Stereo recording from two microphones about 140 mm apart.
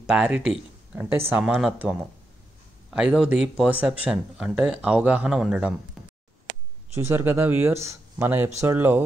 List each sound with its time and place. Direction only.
0.0 s speech: 5° right (ahead or behind)
6.0 s a sound: centre (ahead or behind)
7.0 s speech: 20° right (ahead or behind)